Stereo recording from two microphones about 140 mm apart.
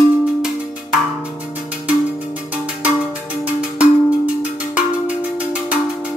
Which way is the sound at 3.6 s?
10° right (ahead or behind).